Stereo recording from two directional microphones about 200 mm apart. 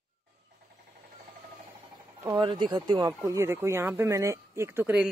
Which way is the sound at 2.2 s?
20° right (ahead or behind).